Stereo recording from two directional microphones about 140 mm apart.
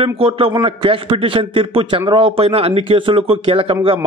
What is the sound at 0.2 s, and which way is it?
A man's voice, 40° right (ahead or behind).